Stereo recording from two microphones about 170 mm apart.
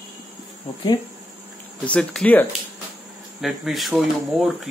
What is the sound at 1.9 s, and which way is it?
Speech, 5° left (ahead or behind).